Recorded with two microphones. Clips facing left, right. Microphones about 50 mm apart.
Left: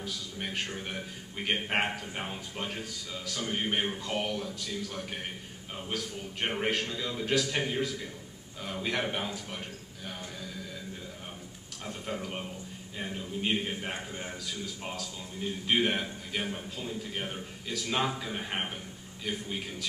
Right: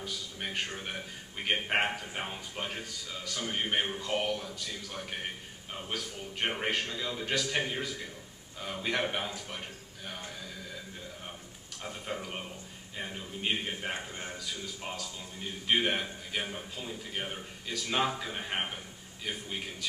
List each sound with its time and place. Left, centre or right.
0.0 s a man's voice: centre
11.8 s a man's voice: centre